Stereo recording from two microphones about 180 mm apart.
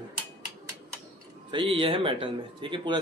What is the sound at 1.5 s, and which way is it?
Speech, 30° right (ahead or behind).